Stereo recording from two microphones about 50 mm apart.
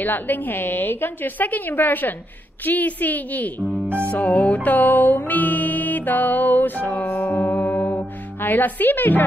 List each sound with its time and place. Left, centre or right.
0.0 s music: left